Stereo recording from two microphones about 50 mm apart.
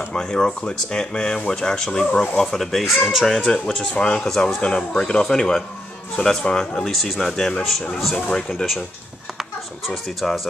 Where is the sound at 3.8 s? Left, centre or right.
Centre.